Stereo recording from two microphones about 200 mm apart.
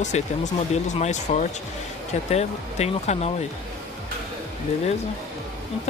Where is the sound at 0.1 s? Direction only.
35° left (ahead or behind).